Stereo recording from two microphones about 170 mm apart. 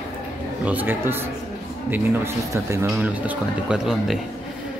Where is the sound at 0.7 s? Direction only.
10° right (ahead or behind).